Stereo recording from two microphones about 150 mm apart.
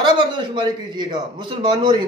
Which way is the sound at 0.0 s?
30° right (ahead or behind).